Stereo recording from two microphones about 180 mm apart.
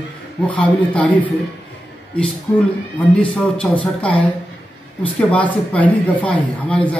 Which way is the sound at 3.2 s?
5° left (ahead or behind).